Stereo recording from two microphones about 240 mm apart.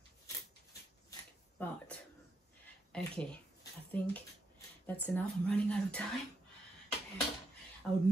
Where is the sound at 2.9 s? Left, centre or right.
Centre.